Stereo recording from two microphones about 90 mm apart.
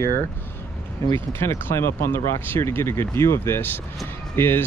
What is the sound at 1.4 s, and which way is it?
Speech, 30° left (ahead or behind).